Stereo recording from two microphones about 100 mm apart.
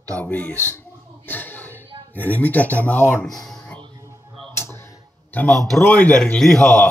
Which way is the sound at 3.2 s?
5° left (ahead or behind).